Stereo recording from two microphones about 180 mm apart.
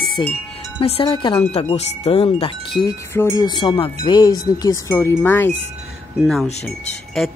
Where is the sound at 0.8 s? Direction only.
30° left (ahead or behind).